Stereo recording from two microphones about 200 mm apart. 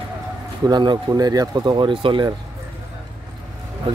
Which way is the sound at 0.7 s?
20° right (ahead or behind).